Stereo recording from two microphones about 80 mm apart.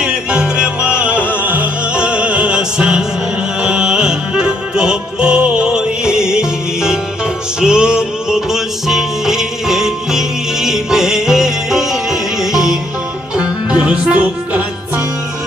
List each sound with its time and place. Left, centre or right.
0.0 s music: centre